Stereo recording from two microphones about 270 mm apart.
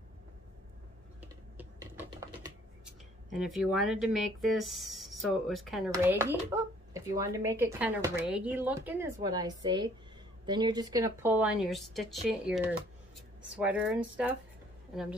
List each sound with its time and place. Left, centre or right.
1.2 s typing: centre
3.3 s speech: centre